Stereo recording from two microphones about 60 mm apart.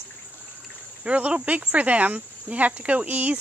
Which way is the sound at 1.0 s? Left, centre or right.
Right.